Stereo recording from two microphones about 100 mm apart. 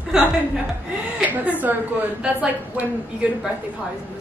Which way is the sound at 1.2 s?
15° right (ahead or behind).